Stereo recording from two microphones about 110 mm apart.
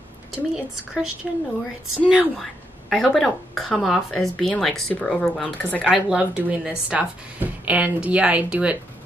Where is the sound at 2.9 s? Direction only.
Centre (ahead or behind).